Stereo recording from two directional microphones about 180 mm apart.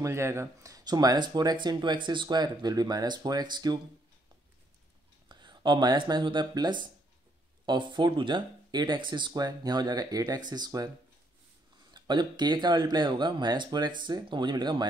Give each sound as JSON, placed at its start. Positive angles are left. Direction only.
{"t": 0.0, "sound": "speech", "side_deg": -15}
{"t": 5.3, "sound": "speech", "side_deg": -25}
{"t": 11.9, "sound": "speech", "side_deg": -25}